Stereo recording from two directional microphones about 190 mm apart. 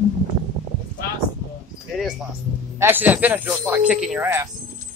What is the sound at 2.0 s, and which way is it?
A man's voice, centre (ahead or behind).